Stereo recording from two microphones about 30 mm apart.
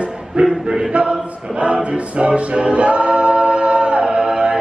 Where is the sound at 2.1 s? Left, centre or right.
Right.